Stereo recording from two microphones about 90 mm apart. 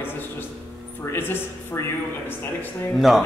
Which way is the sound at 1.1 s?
25° left (ahead or behind).